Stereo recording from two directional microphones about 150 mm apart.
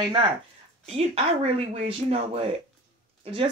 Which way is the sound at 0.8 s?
45° right (ahead or behind).